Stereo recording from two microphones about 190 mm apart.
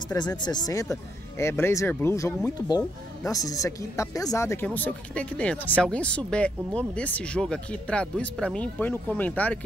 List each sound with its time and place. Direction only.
0.1 s speech: 20° left (ahead or behind)